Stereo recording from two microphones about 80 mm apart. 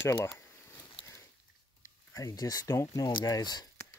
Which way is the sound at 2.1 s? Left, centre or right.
Left.